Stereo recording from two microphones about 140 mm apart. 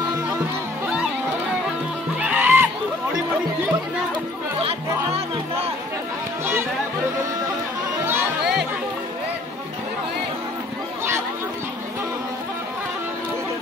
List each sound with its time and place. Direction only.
2.1 s music: 15° right (ahead or behind)